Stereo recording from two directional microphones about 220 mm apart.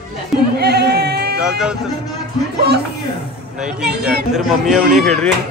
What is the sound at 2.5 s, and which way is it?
Speech, 50° right (ahead or behind).